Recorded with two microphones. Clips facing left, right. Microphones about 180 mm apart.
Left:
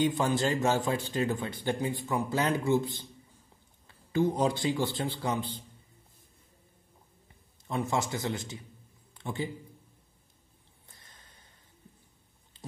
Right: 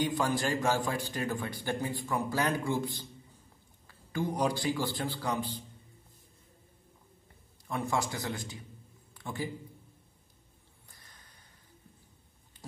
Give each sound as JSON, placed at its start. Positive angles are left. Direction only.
{"t": 0.0, "sound": "a man's voice", "side_deg": 25}
{"t": 7.9, "sound": "a man's voice", "side_deg": 20}
{"t": 10.9, "sound": "a sound", "side_deg": 25}